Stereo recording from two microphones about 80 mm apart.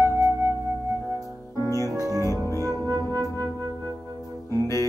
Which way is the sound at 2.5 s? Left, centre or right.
Right.